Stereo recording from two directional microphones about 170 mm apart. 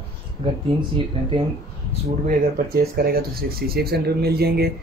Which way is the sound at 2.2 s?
60° right (ahead or behind).